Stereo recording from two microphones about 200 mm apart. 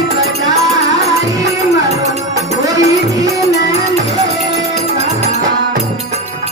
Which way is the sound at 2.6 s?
15° right (ahead or behind).